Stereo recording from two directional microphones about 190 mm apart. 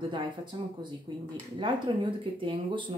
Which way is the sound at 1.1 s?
25° right (ahead or behind).